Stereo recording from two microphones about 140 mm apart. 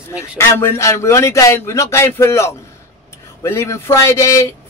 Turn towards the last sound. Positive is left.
turn(degrees=20)  # may be behind; listen again after turning